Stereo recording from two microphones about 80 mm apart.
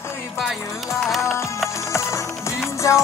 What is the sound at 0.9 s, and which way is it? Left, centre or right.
Music, centre.